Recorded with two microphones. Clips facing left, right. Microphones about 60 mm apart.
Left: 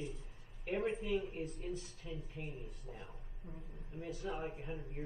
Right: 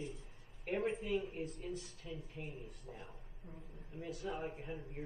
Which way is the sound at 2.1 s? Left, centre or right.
Left.